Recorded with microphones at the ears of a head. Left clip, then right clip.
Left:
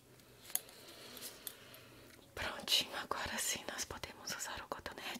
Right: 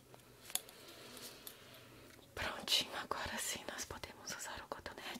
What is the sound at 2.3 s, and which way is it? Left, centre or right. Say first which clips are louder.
Whispering: left 1 dB; centre.